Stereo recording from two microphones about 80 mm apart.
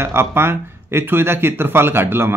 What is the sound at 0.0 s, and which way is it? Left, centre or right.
A man's voice, right.